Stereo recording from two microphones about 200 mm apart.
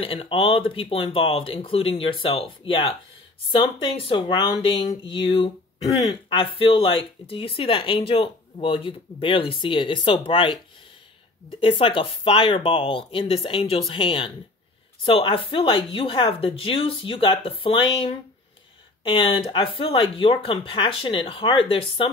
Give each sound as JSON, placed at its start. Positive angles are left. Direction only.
{"t": 0.0, "sound": "speech", "side_deg": 30}
{"t": 11.6, "sound": "speech", "side_deg": 25}